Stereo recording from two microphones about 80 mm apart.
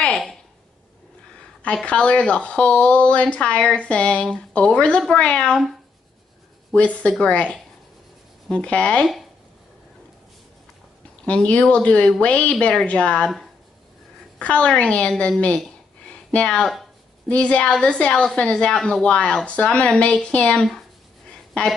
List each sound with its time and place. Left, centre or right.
1.6 s a woman's voice: centre
6.7 s a woman's voice: centre
11.2 s a woman's voice: centre
14.4 s a woman's voice: centre
16.1 s a sound: centre
17.3 s a woman's voice: centre
21.3 s a sound: centre